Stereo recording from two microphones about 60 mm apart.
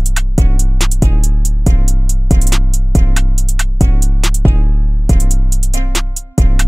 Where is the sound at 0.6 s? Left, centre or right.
Centre.